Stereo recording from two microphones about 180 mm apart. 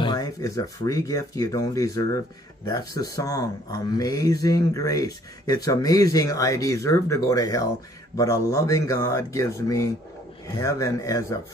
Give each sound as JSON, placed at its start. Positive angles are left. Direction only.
{"t": 0.0, "sound": "speech", "side_deg": 20}